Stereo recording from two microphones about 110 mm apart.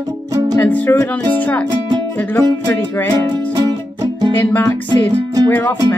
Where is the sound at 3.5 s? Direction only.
35° right (ahead or behind).